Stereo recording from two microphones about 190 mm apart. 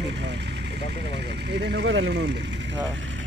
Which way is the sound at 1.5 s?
60° right (ahead or behind).